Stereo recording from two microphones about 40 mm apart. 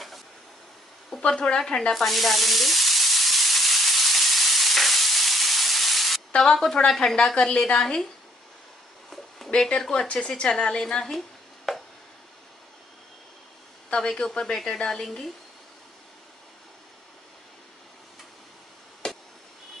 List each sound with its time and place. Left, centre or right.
1.2 s a woman's voice: left
1.9 s sizzle: centre
6.5 s a woman's voice: centre
7.2 s a woman's voice: centre
9.9 s a woman's voice: left
11.1 s a sound: centre
13.8 s a woman's voice: left; by 15.3 s centre
19.0 s chop: centre